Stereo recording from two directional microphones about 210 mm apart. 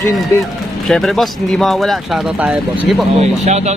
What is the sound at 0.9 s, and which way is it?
Speech, centre (ahead or behind).